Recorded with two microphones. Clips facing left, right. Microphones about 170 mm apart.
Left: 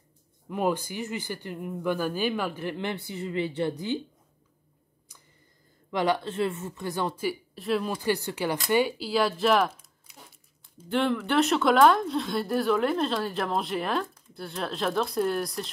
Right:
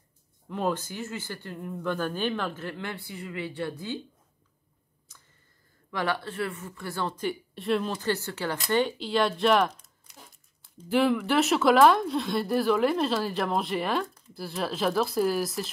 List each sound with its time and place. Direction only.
0.5 s speech: 10° left (ahead or behind)
5.1 s a sound: 10° left (ahead or behind)
5.9 s speech: 20° left (ahead or behind); by 7.9 s centre (ahead or behind)
7.9 s a woman's voice: 10° left (ahead or behind)